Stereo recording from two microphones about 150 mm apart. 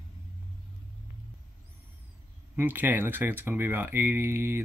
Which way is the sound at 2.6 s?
15° right (ahead or behind).